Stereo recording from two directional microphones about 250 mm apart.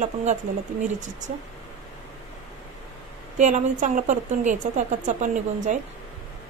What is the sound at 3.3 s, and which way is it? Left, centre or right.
A woman's voice, right.